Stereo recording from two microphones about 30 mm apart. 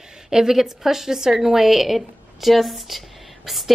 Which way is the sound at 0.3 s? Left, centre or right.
Centre.